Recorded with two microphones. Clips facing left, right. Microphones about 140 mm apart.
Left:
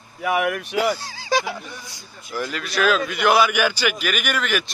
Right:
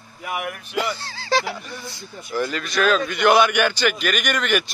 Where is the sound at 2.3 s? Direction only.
5° left (ahead or behind).